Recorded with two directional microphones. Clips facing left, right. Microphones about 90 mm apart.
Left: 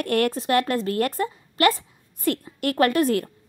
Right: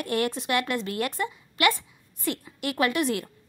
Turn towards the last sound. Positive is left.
turn(degrees=40)  # may be behind; listen again after turning